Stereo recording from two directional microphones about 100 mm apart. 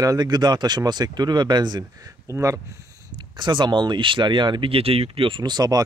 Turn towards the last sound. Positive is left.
turn(degrees=-40)  # may be behind; listen again after turning